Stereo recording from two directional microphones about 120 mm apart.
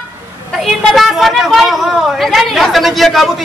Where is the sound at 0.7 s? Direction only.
Centre (ahead or behind).